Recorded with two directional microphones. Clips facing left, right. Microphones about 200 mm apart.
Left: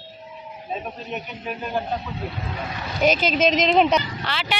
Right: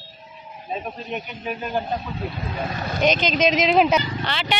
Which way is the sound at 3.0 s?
5° left (ahead or behind).